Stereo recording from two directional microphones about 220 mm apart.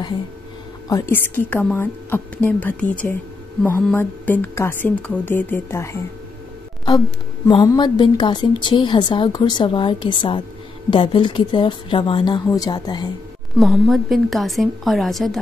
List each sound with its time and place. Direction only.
0.8 s speech: 15° left (ahead or behind)
7.4 s a woman's voice: 20° left (ahead or behind)
13.6 s a woman's voice: centre (ahead or behind)